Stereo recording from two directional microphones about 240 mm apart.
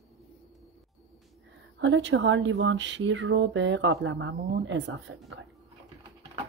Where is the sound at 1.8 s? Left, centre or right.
Right.